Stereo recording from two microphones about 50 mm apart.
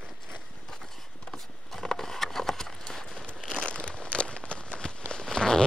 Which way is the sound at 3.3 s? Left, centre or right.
Centre.